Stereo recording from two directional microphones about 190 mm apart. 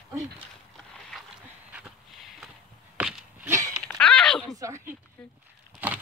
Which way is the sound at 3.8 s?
5° left (ahead or behind).